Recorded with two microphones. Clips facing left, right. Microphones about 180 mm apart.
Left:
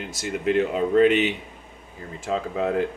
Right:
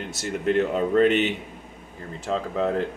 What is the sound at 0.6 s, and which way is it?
Speech, 5° left (ahead or behind).